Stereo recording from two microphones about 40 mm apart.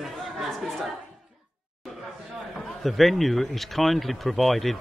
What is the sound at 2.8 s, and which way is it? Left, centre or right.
Speech, centre.